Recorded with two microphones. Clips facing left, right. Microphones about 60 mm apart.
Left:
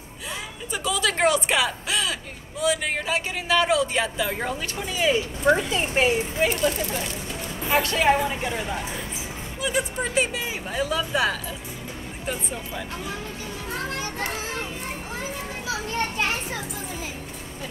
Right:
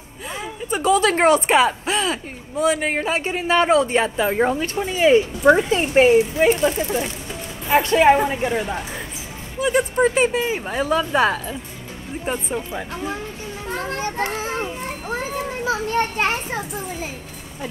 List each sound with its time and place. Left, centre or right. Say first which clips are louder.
0.7 s a woman's voice: right 8 dB; right
9.6 s a child's voice: right 9 dB; right